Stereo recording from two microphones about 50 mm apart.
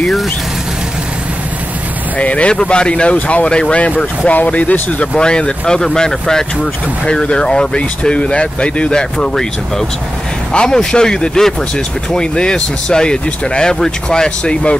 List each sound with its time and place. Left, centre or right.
2.1 s speech: left
4.9 s speech: centre